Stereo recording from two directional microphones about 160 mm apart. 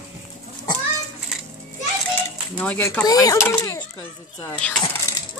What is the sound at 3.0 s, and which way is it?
Speech, 20° left (ahead or behind).